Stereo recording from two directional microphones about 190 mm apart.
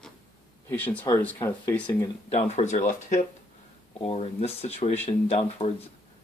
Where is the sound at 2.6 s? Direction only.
40° left (ahead or behind).